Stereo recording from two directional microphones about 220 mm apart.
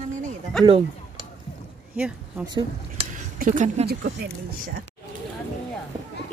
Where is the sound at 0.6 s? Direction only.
Centre (ahead or behind).